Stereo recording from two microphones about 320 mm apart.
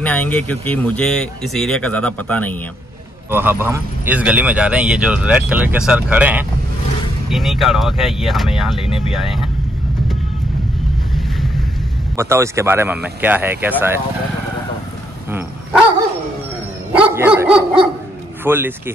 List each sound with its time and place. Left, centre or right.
0.0 s a man's voice: centre
3.3 s a man's voice: centre
8.8 s speech: centre
9.1 s a man's voice: centre
11.1 s a sound: centre
12.2 s speech: centre
17.0 s dog: centre
18.4 s speech: centre